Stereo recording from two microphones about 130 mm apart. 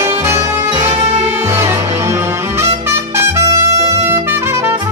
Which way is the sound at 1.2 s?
20° right (ahead or behind).